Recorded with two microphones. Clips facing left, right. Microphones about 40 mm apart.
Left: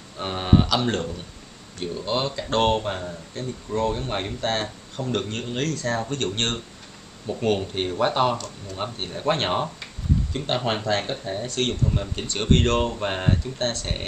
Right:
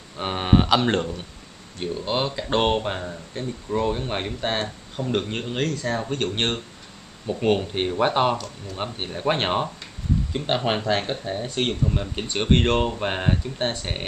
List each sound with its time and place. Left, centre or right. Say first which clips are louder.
0.2 s speech: right 1 dB; centre
1.8 s speech: right 1 dB; centre